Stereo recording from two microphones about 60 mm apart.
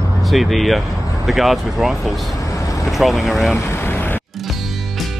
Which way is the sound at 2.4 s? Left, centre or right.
Left.